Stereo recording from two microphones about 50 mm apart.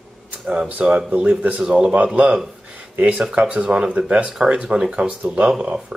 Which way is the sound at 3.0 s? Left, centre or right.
Right.